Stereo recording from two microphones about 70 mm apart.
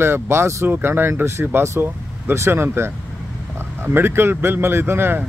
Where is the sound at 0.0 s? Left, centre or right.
Right.